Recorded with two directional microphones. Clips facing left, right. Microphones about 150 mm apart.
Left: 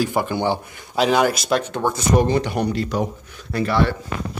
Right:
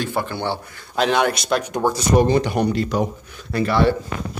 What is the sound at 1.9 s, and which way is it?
Speech, 35° right (ahead or behind).